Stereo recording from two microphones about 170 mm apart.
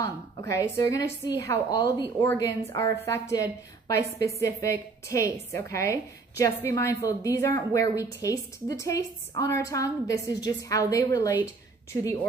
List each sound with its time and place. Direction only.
0.0 s a woman's voice: 15° left (ahead or behind)